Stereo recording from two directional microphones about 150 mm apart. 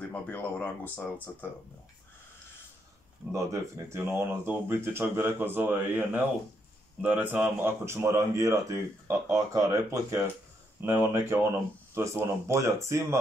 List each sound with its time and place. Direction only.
0.1 s speech: 10° left (ahead or behind)
3.9 s speech: 15° right (ahead or behind)